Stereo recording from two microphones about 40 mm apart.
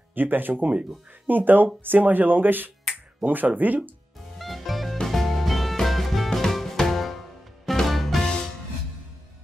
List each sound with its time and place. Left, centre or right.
0.1 s speech: right
4.4 s music: centre